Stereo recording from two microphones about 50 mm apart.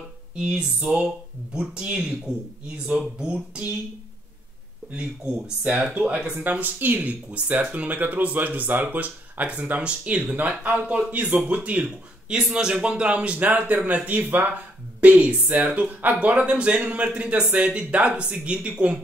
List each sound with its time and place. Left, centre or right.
0.4 s a man's voice: centre
5.9 s a man's voice: right
6.3 s a man's voice: right
11.1 s speech: right
11.8 s a man's voice: centre